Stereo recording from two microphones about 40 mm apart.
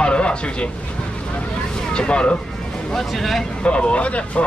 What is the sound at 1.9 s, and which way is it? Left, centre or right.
Speech, left.